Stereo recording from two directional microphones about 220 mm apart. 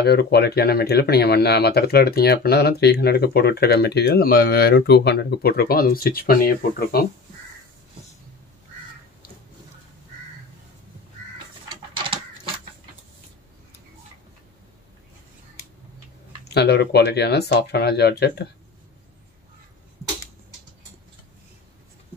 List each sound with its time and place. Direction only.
0.0 s speech: 50° left (ahead or behind)
11.7 s a sound: 20° right (ahead or behind)
16.4 s speech: 50° left (ahead or behind)